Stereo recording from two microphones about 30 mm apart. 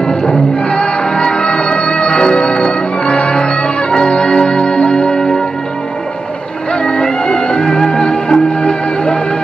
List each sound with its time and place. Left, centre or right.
0.0 s music: left
0.7 s music: left
6.7 s music: left